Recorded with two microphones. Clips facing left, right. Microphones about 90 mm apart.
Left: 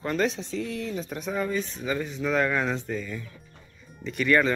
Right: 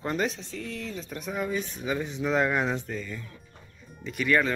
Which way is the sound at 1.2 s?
5° right (ahead or behind).